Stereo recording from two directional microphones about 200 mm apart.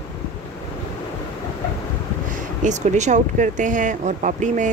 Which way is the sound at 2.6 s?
35° right (ahead or behind).